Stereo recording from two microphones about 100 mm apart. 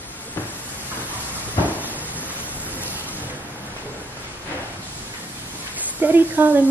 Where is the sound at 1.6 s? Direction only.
15° right (ahead or behind).